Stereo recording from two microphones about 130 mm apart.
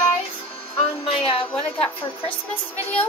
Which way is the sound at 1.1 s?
45° left (ahead or behind).